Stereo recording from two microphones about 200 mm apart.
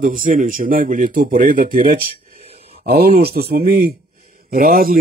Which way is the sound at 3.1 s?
30° right (ahead or behind).